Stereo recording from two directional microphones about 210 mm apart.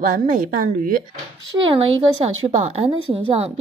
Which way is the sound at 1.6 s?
30° right (ahead or behind).